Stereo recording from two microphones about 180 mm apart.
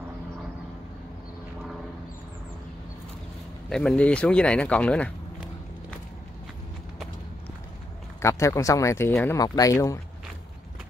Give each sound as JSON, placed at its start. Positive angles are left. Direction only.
{"t": 3.7, "sound": "speech", "side_deg": 5}
{"t": 8.2, "sound": "speech", "side_deg": 15}